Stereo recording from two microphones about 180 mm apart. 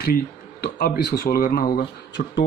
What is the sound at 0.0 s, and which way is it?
Speech, 60° left (ahead or behind).